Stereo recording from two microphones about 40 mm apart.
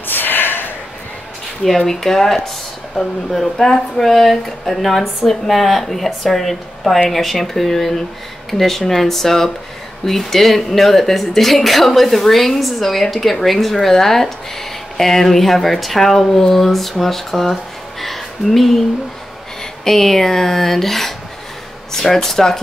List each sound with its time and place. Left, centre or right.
0.0 s snort: left
1.8 s a woman's voice: centre
18.0 s a sound: centre
19.6 s speech: centre